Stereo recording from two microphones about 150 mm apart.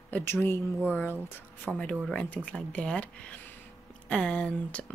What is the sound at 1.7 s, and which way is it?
Speech, 5° right (ahead or behind).